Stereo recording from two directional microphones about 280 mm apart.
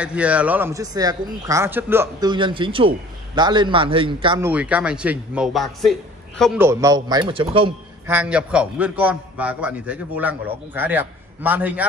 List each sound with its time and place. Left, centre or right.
0.0 s speech: centre
4.5 s a man's voice: centre
8.1 s a man's voice: centre